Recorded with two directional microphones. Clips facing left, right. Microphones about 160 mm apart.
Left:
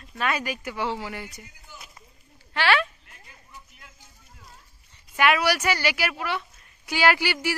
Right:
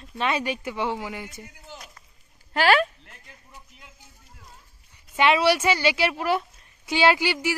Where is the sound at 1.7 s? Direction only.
5° left (ahead or behind).